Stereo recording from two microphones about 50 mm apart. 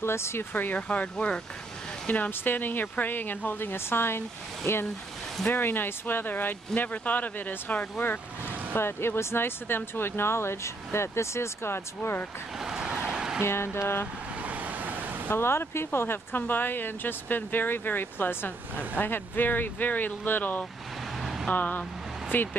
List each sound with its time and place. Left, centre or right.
0.0 s speech: left
0.5 s speech: left
0.7 s speech: left
2.0 s speech: left
5.5 s speech: left
8.7 s speech: left
12.5 s vehicle: centre
13.1 s a sound: centre
13.4 s speech: left
14.4 s vehicle: right
15.3 s speech: left
21.2 s vehicle: centre
21.5 s speech: left